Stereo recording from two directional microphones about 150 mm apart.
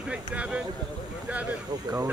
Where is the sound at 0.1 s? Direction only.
5° right (ahead or behind).